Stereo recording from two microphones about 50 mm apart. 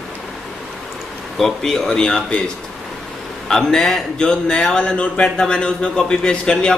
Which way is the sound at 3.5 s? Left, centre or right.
Centre.